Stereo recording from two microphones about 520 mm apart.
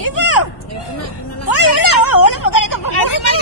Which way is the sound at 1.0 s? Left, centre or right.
Left.